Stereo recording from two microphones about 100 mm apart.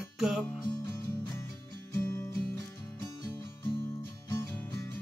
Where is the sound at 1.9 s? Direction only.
25° left (ahead or behind).